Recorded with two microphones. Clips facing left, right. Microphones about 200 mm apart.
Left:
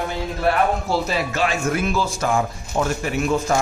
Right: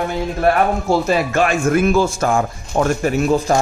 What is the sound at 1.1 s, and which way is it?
Speech, 50° right (ahead or behind).